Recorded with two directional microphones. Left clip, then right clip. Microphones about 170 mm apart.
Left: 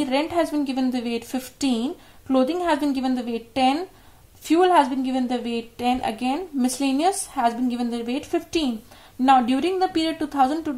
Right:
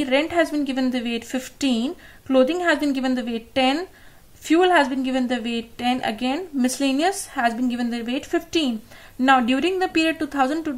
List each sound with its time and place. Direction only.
0.0 s a woman's voice: 35° right (ahead or behind)